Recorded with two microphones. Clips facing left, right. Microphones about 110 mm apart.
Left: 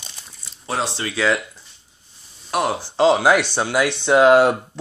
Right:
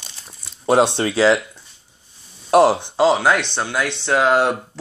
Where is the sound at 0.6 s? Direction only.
60° right (ahead or behind).